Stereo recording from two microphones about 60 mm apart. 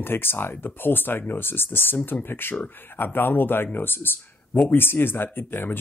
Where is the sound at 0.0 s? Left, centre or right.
Left.